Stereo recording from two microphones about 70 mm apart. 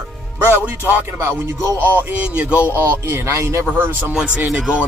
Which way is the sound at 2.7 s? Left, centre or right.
Right.